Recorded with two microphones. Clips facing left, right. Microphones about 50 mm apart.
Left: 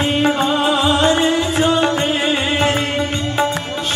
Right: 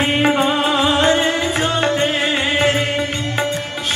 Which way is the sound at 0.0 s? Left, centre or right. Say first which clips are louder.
Right 1 dB; right.